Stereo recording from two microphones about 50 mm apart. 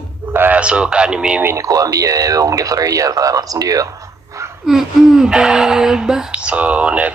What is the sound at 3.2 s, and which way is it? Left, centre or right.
Speech, right.